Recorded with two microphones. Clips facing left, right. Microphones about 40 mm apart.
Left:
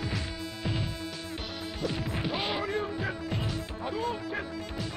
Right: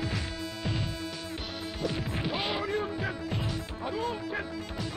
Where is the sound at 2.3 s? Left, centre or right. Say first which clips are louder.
Even; centre.